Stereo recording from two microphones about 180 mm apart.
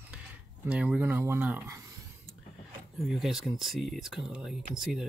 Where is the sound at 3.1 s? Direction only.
Centre (ahead or behind).